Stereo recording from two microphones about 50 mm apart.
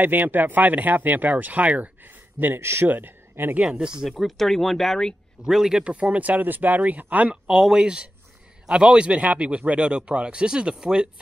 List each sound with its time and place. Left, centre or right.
0.0 s speech: right
2.6 s speech: right
2.9 s speech: right
3.6 s speech: centre
5.4 s speech: centre
5.9 s speech: right
7.4 s speech: centre